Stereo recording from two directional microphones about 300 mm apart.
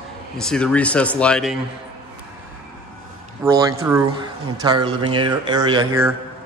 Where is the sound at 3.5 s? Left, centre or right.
Centre.